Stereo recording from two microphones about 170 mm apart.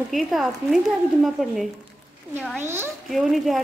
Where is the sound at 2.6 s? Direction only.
15° right (ahead or behind).